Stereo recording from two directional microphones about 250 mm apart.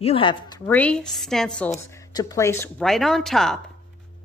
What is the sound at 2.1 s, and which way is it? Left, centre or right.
A woman's voice, centre.